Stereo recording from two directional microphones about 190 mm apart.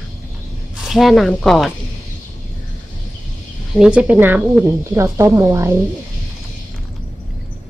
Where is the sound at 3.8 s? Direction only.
5° right (ahead or behind).